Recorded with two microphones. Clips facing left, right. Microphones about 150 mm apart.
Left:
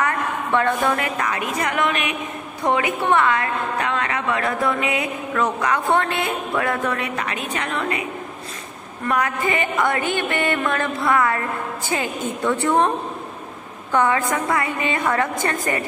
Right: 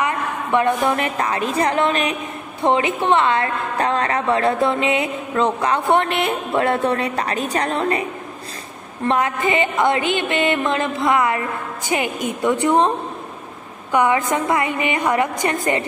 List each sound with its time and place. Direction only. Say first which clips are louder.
0.0 s a woman's voice: even; 15° right (ahead or behind); by 8.0 s 35° right (ahead or behind)
9.0 s a woman's voice: right 3 dB; 25° right (ahead or behind)
13.9 s a woman's voice: right 2 dB; 15° right (ahead or behind)